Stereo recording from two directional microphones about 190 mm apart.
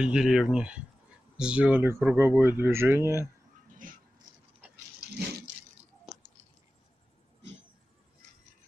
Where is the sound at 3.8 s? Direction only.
45° right (ahead or behind).